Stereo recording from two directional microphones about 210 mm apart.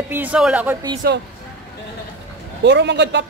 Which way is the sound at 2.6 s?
55° right (ahead or behind).